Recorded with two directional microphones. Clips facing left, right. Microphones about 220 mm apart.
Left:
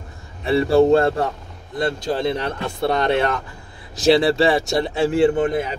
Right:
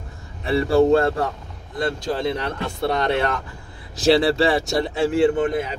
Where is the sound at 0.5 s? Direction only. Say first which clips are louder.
Left 2 dB; 25° left (ahead or behind).